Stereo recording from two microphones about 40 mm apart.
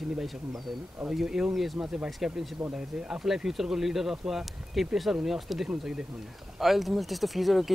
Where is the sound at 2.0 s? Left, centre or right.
Centre.